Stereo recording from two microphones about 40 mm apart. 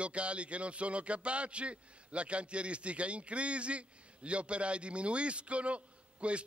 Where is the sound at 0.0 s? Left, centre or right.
Right.